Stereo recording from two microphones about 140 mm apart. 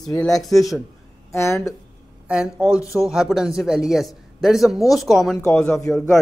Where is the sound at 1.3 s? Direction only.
20° left (ahead or behind).